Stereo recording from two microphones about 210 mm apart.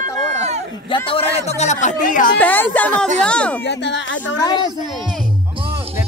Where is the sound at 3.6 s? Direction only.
55° left (ahead or behind).